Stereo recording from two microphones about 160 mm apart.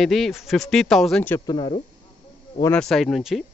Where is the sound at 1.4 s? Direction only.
25° left (ahead or behind).